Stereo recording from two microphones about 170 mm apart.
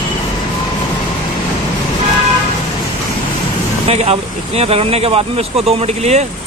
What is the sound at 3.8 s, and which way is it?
Speech, 40° right (ahead or behind).